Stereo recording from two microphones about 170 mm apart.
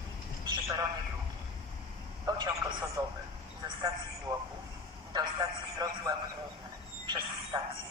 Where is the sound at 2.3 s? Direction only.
25° right (ahead or behind).